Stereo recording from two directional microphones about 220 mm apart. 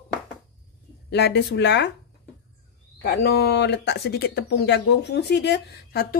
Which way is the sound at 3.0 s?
50° left (ahead or behind).